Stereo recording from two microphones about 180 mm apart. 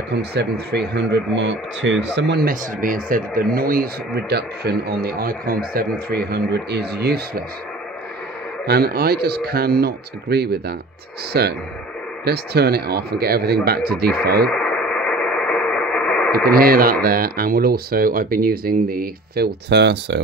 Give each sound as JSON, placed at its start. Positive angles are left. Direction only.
{"t": 0.1, "sound": "speech", "side_deg": -65}
{"t": 8.6, "sound": "speech", "side_deg": -60}
{"t": 14.5, "sound": "radio", "side_deg": 5}
{"t": 16.5, "sound": "speech", "side_deg": -55}